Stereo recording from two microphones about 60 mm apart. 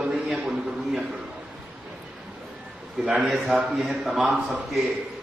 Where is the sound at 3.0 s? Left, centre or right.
Centre.